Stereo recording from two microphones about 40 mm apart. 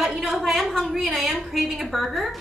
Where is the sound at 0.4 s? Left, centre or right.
Centre.